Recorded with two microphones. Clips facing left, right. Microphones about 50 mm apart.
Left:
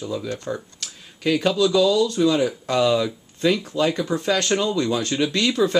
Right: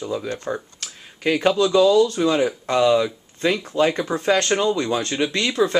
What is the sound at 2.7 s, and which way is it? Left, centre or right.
Speech, centre.